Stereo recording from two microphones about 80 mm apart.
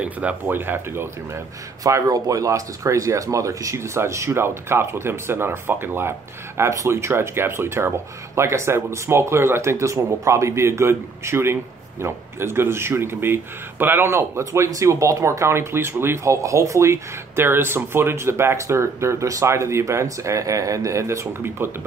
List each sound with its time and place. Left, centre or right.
0.0 s speech: centre
1.8 s speech: right
14.4 s speech: right